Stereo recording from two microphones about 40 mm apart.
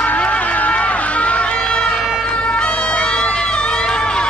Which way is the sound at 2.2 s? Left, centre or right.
Left.